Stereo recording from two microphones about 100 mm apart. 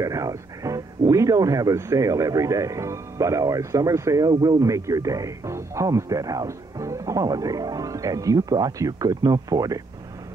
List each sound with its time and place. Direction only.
0.0 s speech: 35° right (ahead or behind)
4.3 s speech: 40° right (ahead or behind)